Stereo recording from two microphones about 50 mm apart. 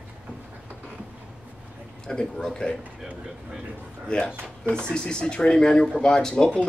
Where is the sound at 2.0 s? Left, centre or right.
Centre.